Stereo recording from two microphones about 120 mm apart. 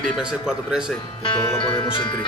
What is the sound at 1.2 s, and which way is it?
Music, 45° left (ahead or behind).